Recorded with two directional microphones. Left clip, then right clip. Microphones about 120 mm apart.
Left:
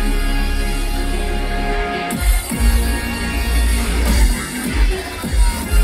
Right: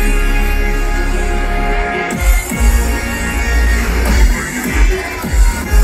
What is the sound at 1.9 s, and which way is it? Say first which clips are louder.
Music: right 5 dB; 15° right (ahead or behind).